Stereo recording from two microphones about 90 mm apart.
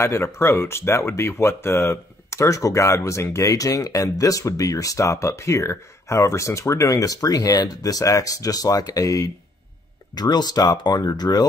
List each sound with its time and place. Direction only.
0.0 s speech: 30° left (ahead or behind)